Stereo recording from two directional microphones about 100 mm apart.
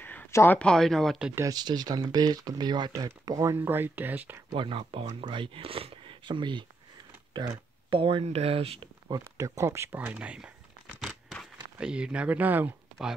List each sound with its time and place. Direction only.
0.0 s a sound: 15° left (ahead or behind)
0.3 s speech: 25° left (ahead or behind)
0.6 s speech: 5° left (ahead or behind)
1.5 s speech: 45° right (ahead or behind)
3.3 s speech: 35° right (ahead or behind)
3.5 s speech: 20° right (ahead or behind)
4.6 s speech: 60° right (ahead or behind)
7.9 s speech: 65° right (ahead or behind)
9.1 s speech: 35° right (ahead or behind); by 10.5 s 10° right (ahead or behind)
11.8 s speech: 10° right (ahead or behind)